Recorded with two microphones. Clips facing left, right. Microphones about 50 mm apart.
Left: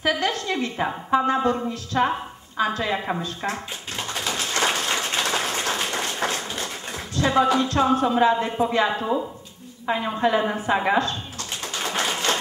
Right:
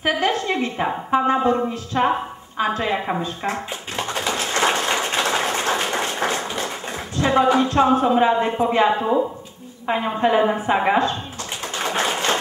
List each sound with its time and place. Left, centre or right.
0.0 s a woman's voice: right
3.9 s a sound: right
7.2 s speech: right
11.7 s tap: right